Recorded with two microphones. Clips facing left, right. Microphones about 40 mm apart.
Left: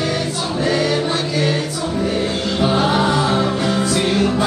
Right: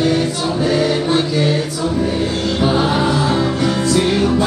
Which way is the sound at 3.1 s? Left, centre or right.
Centre.